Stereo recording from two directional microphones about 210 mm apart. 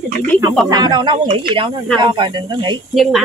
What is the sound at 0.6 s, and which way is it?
Speech, 20° right (ahead or behind).